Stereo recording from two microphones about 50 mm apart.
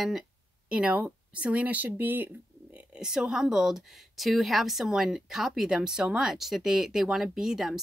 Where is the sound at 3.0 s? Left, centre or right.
Centre.